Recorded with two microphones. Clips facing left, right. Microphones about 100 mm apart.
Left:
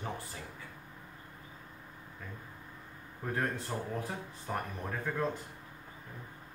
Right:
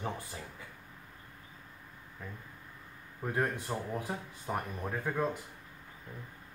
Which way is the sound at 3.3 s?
15° right (ahead or behind).